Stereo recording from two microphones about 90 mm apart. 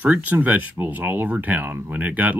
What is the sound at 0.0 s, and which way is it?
Speech, 20° right (ahead or behind).